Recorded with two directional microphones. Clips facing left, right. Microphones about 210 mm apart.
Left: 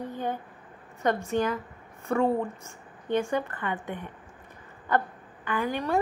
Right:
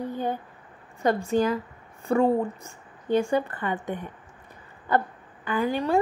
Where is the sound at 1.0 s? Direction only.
30° right (ahead or behind).